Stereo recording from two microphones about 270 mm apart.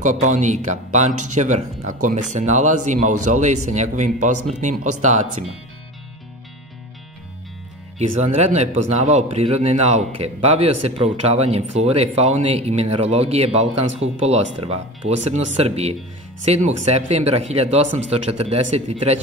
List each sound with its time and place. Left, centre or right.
0.0 s speech: right
8.2 s speech: right